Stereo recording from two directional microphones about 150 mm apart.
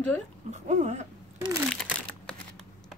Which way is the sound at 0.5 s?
50° right (ahead or behind).